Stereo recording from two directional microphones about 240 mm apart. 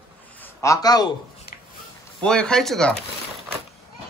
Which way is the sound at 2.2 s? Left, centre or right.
Centre.